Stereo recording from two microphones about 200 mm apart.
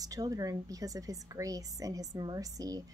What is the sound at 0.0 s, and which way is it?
A woman's voice, 20° right (ahead or behind).